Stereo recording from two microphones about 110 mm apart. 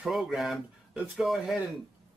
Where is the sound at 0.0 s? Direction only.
Centre (ahead or behind).